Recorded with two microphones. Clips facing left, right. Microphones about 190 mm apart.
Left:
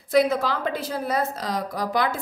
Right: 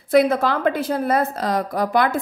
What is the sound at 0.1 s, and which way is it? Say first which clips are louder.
A woman's voice: right 4 dB; 55° right (ahead or behind).